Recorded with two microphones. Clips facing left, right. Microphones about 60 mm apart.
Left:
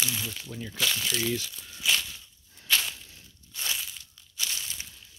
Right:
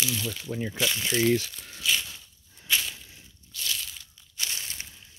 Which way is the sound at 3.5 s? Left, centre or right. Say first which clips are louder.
Even; left.